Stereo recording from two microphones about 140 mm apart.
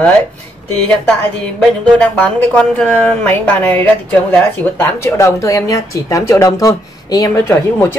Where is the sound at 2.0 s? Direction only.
10° left (ahead or behind).